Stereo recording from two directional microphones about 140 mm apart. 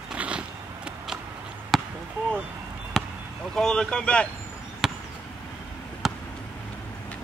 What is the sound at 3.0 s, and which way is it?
Basketball bounce, centre (ahead or behind).